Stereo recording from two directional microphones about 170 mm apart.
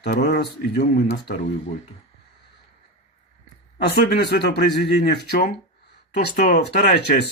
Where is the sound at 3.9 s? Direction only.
75° left (ahead or behind).